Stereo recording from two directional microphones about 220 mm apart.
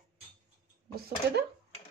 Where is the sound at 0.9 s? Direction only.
50° right (ahead or behind).